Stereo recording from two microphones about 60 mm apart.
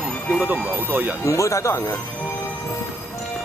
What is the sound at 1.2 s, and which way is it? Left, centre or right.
Speech, left.